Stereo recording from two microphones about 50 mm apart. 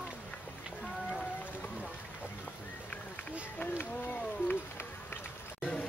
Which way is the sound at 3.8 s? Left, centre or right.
Left.